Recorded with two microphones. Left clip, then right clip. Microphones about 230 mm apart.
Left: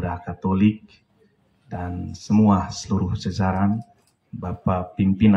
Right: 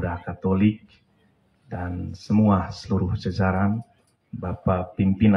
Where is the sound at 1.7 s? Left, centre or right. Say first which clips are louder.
Left 1 dB; left.